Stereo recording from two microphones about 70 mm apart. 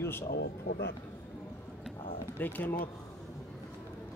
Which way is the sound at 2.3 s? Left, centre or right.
Left.